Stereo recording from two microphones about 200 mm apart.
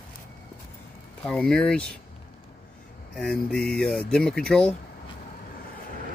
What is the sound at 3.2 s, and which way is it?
Speech, 5° left (ahead or behind).